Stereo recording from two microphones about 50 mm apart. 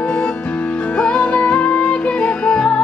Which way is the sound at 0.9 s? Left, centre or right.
Left.